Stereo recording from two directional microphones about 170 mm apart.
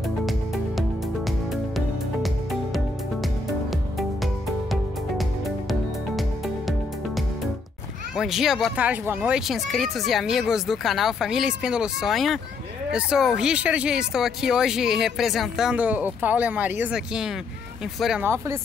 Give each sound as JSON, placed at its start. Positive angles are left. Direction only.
{"t": 5.7, "sound": "music", "side_deg": 0}
{"t": 8.2, "sound": "speech", "side_deg": 0}
{"t": 8.8, "sound": "speech", "side_deg": -10}